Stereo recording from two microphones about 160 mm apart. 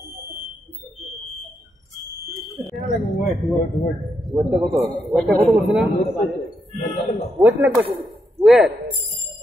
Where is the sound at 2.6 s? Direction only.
Centre (ahead or behind).